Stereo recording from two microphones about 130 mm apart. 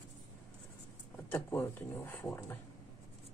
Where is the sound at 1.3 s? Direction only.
15° left (ahead or behind).